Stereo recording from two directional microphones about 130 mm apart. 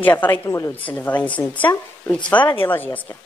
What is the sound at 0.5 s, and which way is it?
Speech, 25° left (ahead or behind).